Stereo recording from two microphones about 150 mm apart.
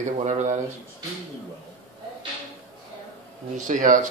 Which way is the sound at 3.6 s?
60° right (ahead or behind).